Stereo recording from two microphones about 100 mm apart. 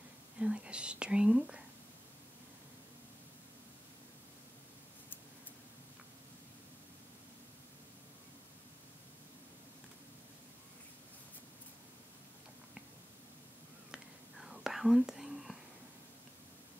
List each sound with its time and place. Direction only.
0.4 s speech: 10° right (ahead or behind)
13.9 s whispering: 5° right (ahead or behind)